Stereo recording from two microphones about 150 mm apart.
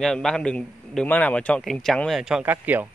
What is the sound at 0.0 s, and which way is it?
Speech, 5° left (ahead or behind).